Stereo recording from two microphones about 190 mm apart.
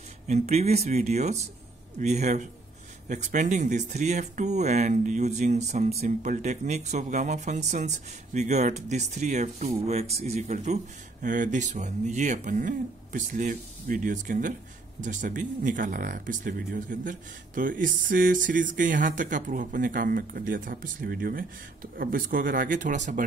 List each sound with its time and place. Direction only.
0.3 s speech: 35° right (ahead or behind)